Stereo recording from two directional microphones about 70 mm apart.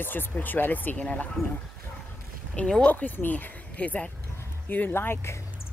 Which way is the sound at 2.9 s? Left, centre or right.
Left.